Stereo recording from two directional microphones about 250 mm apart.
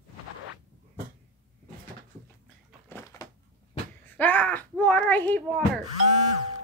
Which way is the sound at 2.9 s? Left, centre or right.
Centre.